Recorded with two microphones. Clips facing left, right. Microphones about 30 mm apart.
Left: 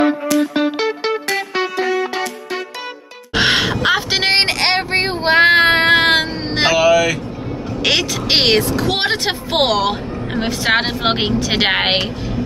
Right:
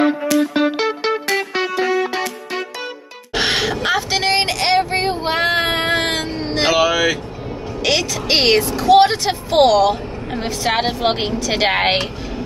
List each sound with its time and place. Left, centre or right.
0.6 s music: centre
3.3 s vehicle: centre; by 6.6 s left
6.7 s vehicle: centre
7.8 s speech: left
8.8 s speech: left